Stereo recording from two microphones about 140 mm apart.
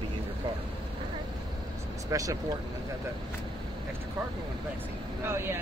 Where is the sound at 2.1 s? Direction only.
25° right (ahead or behind).